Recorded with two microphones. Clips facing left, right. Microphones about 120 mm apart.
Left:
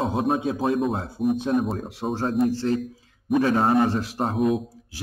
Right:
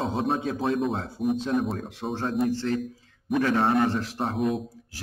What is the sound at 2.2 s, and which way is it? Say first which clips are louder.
Speech: left 4 dB; centre (ahead or behind).